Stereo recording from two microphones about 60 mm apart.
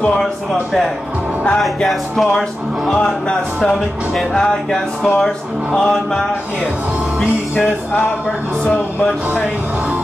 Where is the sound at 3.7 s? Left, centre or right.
Centre.